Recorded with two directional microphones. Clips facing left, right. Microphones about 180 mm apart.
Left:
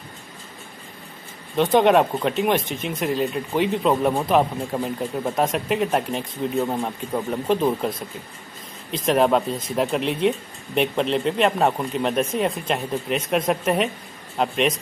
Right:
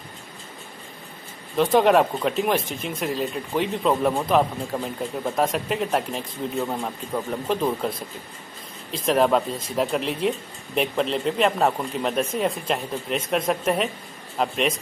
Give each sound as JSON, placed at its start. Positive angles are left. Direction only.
{"t": 1.6, "sound": "speech", "side_deg": 0}
{"t": 9.0, "sound": "speech", "side_deg": 0}